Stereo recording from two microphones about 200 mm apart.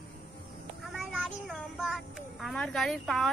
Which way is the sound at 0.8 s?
Centre (ahead or behind).